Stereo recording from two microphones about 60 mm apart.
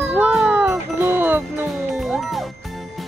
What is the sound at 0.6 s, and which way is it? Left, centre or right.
Music, right.